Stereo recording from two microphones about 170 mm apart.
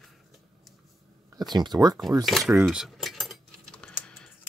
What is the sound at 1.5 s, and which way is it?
Speech, 25° right (ahead or behind).